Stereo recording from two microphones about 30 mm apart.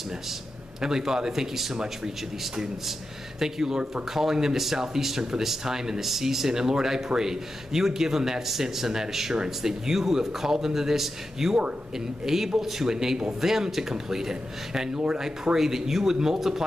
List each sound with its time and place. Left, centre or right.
0.7 s a man's voice: centre
3.3 s a man's voice: centre